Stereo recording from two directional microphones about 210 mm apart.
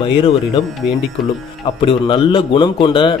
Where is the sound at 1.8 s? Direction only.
25° left (ahead or behind).